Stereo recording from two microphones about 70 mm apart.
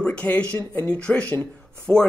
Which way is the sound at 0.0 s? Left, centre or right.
Centre.